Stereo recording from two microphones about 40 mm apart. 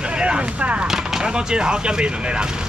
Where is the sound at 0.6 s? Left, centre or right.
Right.